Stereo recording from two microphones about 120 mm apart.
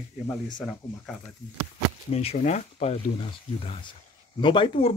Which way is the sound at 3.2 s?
50° left (ahead or behind).